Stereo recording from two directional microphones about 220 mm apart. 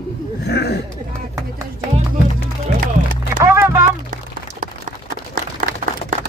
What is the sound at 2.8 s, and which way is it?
Music, 40° right (ahead or behind).